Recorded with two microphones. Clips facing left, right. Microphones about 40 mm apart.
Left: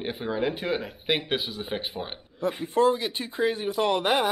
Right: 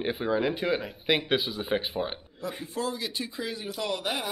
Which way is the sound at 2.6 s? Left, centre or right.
Left.